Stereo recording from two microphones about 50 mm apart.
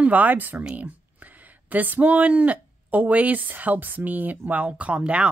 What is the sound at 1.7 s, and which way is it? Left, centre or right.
Speech, right.